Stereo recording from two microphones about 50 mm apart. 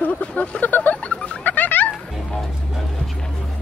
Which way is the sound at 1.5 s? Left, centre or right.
Left.